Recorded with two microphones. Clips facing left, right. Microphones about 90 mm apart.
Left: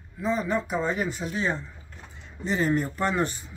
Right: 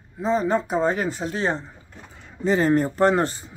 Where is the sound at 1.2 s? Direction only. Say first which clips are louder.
Right 4 dB; 50° right (ahead or behind).